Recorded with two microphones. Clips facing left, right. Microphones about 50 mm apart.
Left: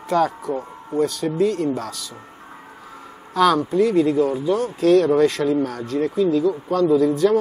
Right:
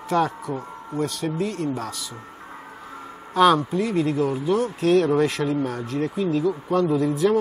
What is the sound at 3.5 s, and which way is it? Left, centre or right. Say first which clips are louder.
Speech: left 6 dB; centre.